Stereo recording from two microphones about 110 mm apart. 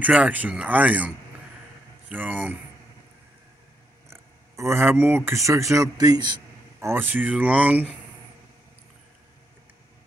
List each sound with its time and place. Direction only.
0.0 s speech: 10° right (ahead or behind)
4.1 s speech: 25° right (ahead or behind)
6.8 s speech: 20° right (ahead or behind)